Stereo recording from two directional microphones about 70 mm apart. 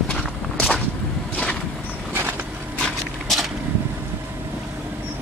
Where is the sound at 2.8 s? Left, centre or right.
Centre.